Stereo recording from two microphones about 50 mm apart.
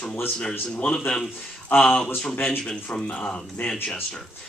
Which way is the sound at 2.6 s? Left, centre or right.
Centre.